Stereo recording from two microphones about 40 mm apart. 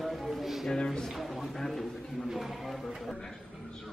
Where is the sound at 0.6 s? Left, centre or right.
Centre.